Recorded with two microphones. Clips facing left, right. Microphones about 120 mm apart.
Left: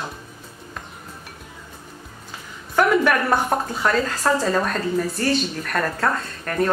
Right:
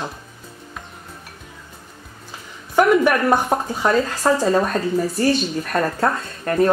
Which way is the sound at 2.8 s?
15° right (ahead or behind).